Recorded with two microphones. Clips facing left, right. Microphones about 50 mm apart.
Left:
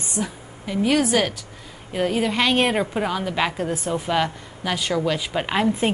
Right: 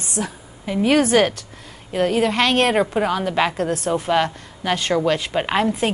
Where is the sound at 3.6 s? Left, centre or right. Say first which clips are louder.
Right 3 dB; centre.